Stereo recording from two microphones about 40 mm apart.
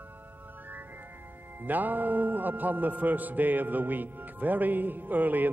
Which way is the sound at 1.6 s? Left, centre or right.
Right.